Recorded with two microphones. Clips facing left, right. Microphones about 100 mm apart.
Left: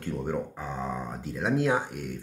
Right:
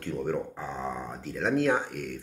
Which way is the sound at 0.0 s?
10° left (ahead or behind).